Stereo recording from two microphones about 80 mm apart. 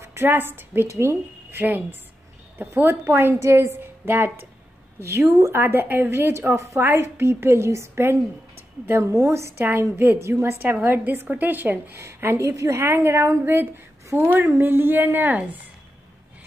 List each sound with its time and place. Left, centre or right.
0.0 s a woman's voice: right
1.6 s a woman's voice: right
6.8 s a woman's voice: right